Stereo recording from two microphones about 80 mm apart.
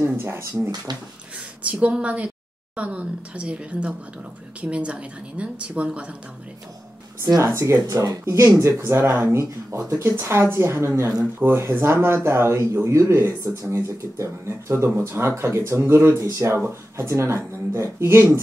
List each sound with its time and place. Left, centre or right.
0.2 s speech: right
1.6 s a woman's voice: centre
7.2 s speech: right